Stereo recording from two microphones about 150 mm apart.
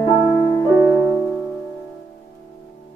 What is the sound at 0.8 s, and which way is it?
Music, 10° right (ahead or behind).